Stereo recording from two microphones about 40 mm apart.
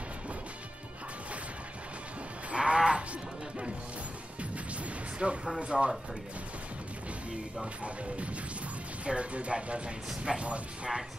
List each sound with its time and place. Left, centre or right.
2.5 s livestock: right
5.2 s speech: right
9.0 s speech: right
10.3 s speech: centre